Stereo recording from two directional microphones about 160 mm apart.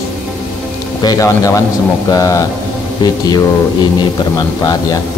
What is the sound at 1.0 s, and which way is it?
Speech, 20° left (ahead or behind).